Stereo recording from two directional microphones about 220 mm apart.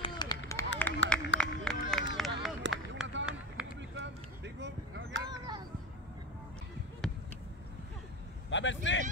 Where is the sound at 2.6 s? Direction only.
55° right (ahead or behind).